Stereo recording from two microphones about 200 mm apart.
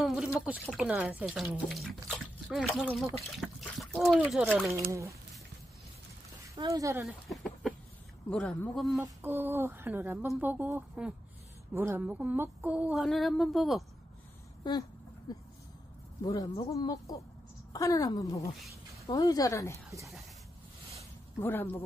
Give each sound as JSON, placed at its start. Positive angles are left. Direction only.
{"t": 0.0, "sound": "a sound", "side_deg": 0}
{"t": 0.5, "sound": "speech", "side_deg": -5}
{"t": 3.3, "sound": "water", "side_deg": 0}
{"t": 4.2, "sound": "speech", "side_deg": -5}
{"t": 6.5, "sound": "speech", "side_deg": -15}
{"t": 7.1, "sound": "a sound", "side_deg": 0}
{"t": 8.3, "sound": "speech", "side_deg": 5}
{"t": 9.0, "sound": "speech", "side_deg": -10}
{"t": 14.6, "sound": "a sound", "side_deg": 20}
{"t": 16.2, "sound": "speech", "side_deg": 20}
{"t": 21.4, "sound": "speech", "side_deg": 10}